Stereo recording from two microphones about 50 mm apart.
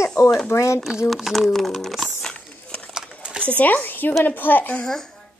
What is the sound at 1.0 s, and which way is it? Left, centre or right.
Speech, centre.